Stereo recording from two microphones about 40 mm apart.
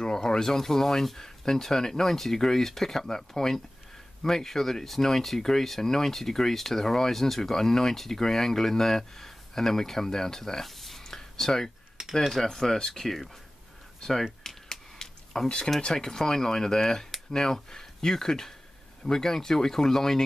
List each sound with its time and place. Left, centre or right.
0.0 s speech: centre
14.4 s a sound: centre
15.9 s speech: centre